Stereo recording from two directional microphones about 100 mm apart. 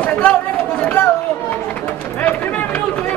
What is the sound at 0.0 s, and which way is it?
Chatter, 15° left (ahead or behind).